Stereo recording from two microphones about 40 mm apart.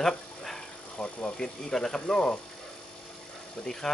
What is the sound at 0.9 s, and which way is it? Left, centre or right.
Speech, left.